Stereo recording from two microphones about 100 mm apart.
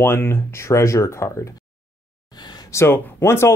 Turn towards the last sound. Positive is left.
turn(degrees=25)  # may be behind; listen again after turning